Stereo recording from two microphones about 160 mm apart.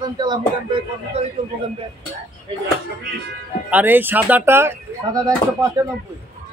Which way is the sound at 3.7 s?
10° right (ahead or behind).